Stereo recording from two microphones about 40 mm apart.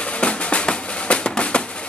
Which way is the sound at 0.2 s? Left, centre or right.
Left.